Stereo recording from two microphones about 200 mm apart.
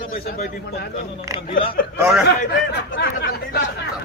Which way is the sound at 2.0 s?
10° right (ahead or behind).